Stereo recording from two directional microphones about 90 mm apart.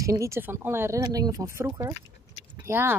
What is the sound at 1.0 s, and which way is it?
Speech, 45° right (ahead or behind).